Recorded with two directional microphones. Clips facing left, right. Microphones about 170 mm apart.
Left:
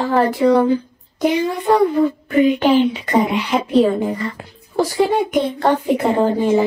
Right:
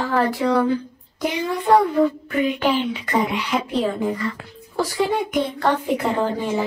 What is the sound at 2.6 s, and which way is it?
A woman's voice, 25° left (ahead or behind).